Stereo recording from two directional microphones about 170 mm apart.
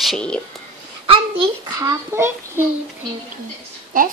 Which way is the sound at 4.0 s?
55° right (ahead or behind).